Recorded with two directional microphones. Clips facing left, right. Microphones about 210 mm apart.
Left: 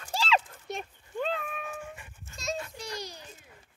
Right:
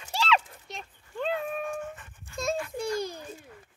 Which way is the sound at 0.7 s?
55° left (ahead or behind).